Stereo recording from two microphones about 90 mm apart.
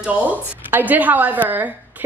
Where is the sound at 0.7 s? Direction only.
20° right (ahead or behind).